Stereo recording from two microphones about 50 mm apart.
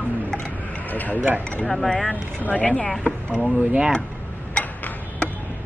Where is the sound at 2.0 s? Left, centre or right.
Left.